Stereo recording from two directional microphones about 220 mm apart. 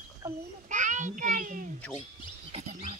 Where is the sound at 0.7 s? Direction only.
35° right (ahead or behind).